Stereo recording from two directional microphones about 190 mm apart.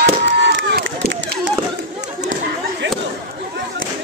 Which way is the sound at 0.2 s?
70° right (ahead or behind).